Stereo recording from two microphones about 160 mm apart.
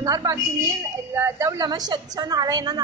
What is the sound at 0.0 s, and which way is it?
Speech, 20° right (ahead or behind).